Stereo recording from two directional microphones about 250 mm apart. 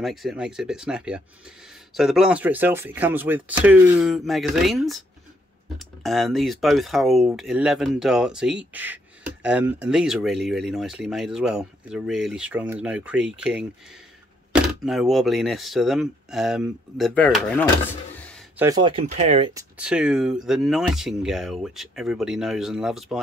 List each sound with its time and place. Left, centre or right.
0.0 s speech: centre
18.6 s speech: centre
19.8 s speech: centre